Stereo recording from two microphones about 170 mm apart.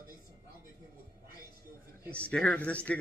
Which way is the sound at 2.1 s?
5° left (ahead or behind).